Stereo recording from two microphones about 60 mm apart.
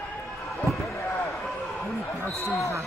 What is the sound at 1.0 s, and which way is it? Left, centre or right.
Basketball bounce, left.